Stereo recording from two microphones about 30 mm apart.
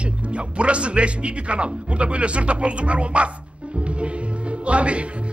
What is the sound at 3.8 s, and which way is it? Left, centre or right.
Music, right.